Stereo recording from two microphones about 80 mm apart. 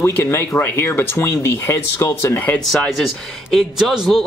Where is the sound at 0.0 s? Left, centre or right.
Left.